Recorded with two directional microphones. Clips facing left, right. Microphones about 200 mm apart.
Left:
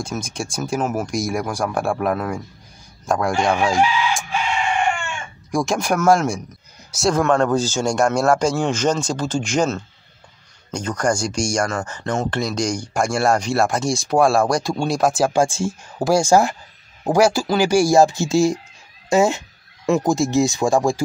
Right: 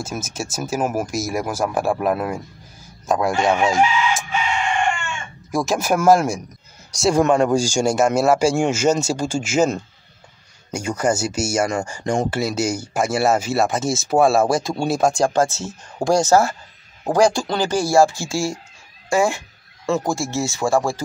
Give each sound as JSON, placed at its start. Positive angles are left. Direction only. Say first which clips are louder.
{"t": 0.0, "sound": "speech", "louder": "left 1 dB", "side_deg": -5}
{"t": 5.5, "sound": "a man's voice", "louder": "even", "side_deg": -5}
{"t": 7.2, "sound": "speech", "louder": "right 2 dB", "side_deg": -15}